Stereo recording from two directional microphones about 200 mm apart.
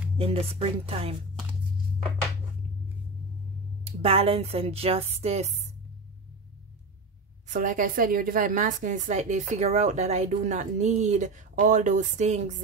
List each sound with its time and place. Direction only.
0.2 s speech: 30° right (ahead or behind)
3.8 s a woman's voice: 30° right (ahead or behind)
7.4 s a woman's voice: 40° right (ahead or behind)